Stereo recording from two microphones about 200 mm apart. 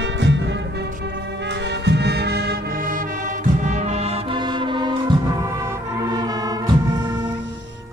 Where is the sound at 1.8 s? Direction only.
55° right (ahead or behind).